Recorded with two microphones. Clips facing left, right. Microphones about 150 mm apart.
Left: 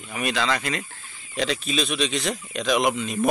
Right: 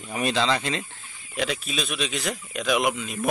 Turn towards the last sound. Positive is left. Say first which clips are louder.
# left 2 dB
turn(degrees=-5)  # may be behind; listen again after turning